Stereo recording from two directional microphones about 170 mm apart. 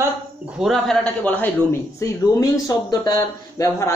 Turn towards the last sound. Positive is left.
turn(degrees=20)  # may be behind; listen again after turning